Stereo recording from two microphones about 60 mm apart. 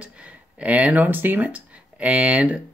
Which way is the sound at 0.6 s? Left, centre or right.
Right.